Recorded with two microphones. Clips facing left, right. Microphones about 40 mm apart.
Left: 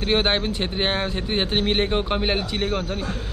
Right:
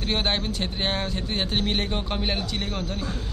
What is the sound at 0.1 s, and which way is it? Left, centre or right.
Speech, left.